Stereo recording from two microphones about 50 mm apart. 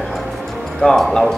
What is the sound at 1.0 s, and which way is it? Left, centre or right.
Speech, centre.